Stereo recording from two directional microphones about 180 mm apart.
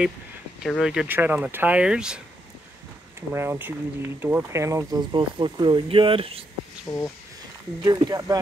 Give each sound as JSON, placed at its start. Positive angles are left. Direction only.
{"t": 0.6, "sound": "speech", "side_deg": 0}
{"t": 6.9, "sound": "speech", "side_deg": 20}
{"t": 7.8, "sound": "speech", "side_deg": -20}